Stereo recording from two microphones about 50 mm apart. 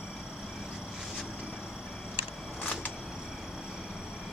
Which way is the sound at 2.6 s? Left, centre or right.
Left.